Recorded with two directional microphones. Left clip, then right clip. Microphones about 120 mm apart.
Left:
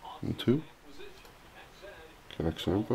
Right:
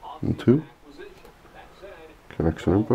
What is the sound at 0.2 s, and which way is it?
Speech, centre (ahead or behind).